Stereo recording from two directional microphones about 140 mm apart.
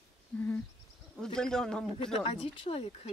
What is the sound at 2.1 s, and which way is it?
Speech, 45° left (ahead or behind).